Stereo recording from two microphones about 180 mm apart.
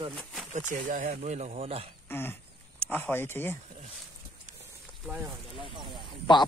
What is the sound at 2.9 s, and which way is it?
Speech, 10° left (ahead or behind).